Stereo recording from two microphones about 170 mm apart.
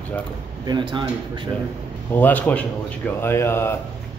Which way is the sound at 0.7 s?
25° right (ahead or behind).